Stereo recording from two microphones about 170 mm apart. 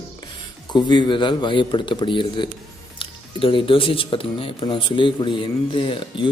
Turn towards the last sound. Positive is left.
turn(degrees=30)  # may be behind; listen again after turning